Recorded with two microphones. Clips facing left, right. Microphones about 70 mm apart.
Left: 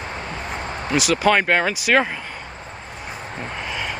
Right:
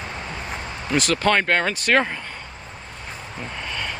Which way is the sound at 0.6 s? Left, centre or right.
Left.